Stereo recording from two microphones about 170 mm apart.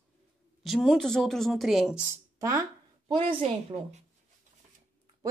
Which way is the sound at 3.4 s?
40° right (ahead or behind).